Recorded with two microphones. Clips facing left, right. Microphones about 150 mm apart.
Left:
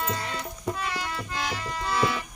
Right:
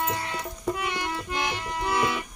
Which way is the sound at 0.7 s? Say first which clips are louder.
Right 2 dB; 20° right (ahead or behind).